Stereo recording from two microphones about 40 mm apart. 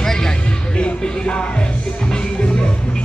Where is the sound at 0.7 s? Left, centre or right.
Left.